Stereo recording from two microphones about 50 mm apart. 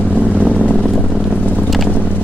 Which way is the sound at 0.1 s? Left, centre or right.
Right.